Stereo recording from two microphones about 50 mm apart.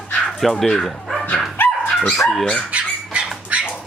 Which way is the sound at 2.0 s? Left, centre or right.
Centre.